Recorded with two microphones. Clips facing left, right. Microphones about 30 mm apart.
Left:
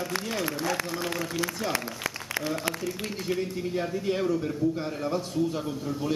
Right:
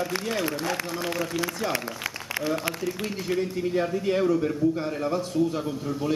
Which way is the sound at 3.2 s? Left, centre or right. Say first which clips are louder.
Right 3 dB; centre.